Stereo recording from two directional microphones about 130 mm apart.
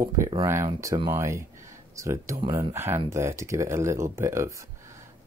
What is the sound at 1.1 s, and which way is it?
Speech, 20° right (ahead or behind).